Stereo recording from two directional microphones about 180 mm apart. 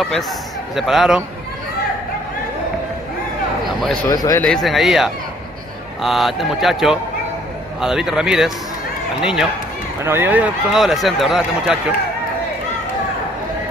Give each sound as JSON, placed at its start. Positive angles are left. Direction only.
{"t": 0.7, "sound": "speech", "side_deg": 0}
{"t": 4.1, "sound": "speech", "side_deg": 20}
{"t": 4.4, "sound": "speech", "side_deg": 0}